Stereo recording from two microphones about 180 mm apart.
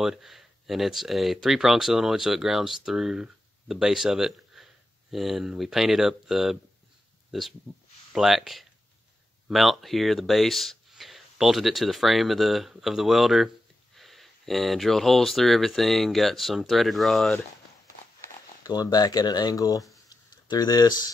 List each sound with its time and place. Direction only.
0.0 s speech: centre (ahead or behind)
18.6 s speech: 20° left (ahead or behind)
20.1 s a sound: 20° left (ahead or behind)